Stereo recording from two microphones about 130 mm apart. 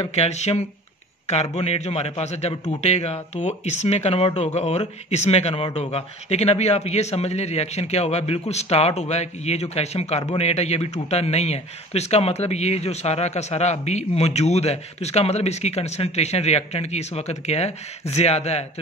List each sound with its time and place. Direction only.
0.0 s a man's voice: 55° left (ahead or behind)